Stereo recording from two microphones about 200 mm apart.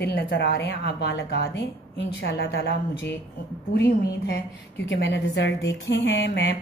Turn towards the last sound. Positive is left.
turn(degrees=55)  # may be behind; listen again after turning